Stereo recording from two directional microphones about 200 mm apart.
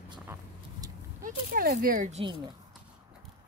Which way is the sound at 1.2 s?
45° right (ahead or behind).